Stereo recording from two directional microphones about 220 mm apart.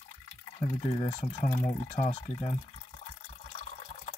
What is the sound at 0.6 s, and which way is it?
Speech, 30° left (ahead or behind).